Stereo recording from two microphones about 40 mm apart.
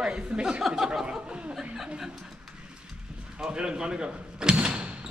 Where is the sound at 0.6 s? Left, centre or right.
Centre.